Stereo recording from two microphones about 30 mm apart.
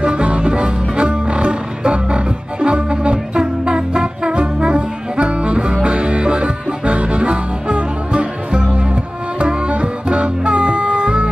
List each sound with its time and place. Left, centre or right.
0.0 s music: right